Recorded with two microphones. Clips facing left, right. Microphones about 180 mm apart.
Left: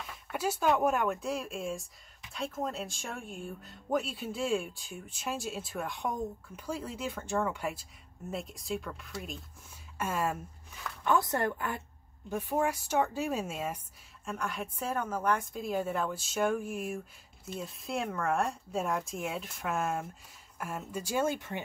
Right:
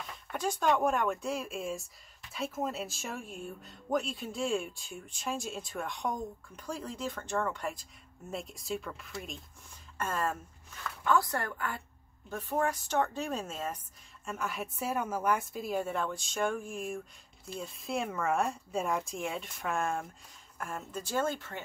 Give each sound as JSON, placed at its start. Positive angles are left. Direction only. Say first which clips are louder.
{"t": 0.0, "sound": "speech", "louder": "left 1 dB", "side_deg": 5}
{"t": 11.1, "sound": "a woman's voice", "louder": "left 2 dB", "side_deg": 20}
{"t": 14.2, "sound": "a woman's voice", "louder": "even", "side_deg": 0}